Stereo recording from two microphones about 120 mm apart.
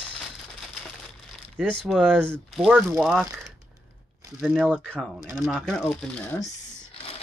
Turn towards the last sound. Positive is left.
turn(degrees=10)  # may be behind; listen again after turning